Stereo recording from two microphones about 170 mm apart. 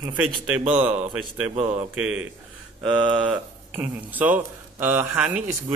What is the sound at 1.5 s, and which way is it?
Speech, 40° right (ahead or behind).